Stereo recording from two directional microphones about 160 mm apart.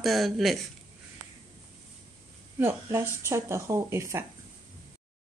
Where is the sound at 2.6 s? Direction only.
15° right (ahead or behind).